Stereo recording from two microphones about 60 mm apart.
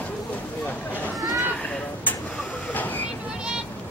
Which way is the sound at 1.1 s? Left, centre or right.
Centre.